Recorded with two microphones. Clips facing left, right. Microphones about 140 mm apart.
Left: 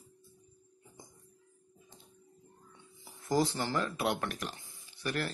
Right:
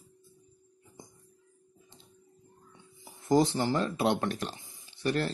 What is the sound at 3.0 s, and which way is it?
Speech, 20° right (ahead or behind).